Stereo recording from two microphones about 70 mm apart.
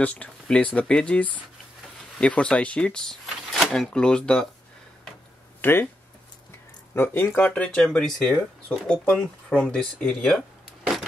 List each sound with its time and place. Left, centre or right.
0.0 s speech: left
5.6 s speech: left
7.0 s speech: left
7.5 s speech: centre